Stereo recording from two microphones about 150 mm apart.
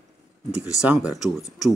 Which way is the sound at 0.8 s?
Centre (ahead or behind).